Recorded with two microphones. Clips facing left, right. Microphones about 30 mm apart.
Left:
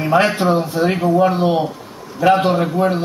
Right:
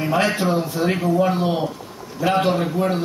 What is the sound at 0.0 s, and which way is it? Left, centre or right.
A man's voice, left.